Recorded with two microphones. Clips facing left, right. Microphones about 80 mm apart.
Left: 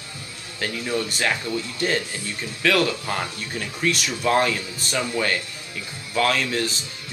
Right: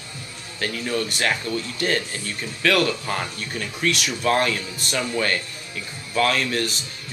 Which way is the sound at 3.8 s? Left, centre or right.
Right.